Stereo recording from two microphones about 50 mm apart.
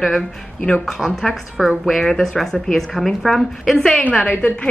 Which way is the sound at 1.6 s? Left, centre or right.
Centre.